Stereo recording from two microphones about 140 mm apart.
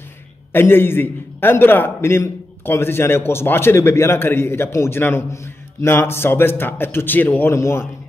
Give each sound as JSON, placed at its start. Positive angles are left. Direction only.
{"t": 0.5, "sound": "a man's voice", "side_deg": 15}